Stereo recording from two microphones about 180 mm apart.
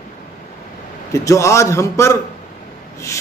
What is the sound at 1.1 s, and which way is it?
A man's voice, 15° left (ahead or behind).